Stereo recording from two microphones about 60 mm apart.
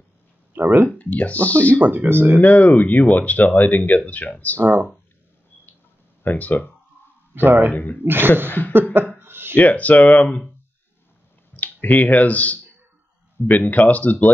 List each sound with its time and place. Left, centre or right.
0.5 s speech: right
0.8 s speech: left
1.8 s speech: right
2.4 s speech: left
4.6 s speech: right
6.2 s speech: left
7.4 s speech: right
7.7 s speech: left
8.0 s speech: right
8.5 s speech: left
9.2 s a sound: right
9.6 s speech: left
11.5 s speech: left